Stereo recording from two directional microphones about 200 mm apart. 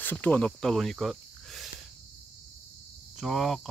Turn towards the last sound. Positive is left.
turn(degrees=0)  # may be behind; listen again after turning